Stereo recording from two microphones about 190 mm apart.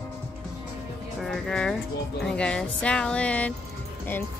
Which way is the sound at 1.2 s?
Centre (ahead or behind).